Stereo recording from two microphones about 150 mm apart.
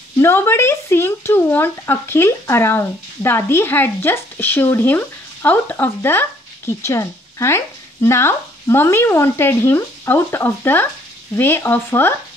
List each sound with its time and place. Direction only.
0.2 s speech: 15° left (ahead or behind)